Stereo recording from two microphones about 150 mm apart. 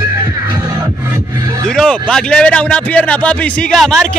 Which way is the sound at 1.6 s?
5° left (ahead or behind).